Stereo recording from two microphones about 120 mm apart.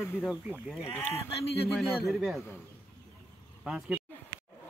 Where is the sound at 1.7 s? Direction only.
Centre (ahead or behind).